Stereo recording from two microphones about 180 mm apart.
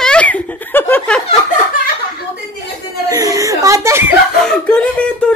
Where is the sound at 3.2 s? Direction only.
20° right (ahead or behind).